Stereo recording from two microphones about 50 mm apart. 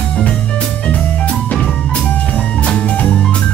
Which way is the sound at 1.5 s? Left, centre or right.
Centre.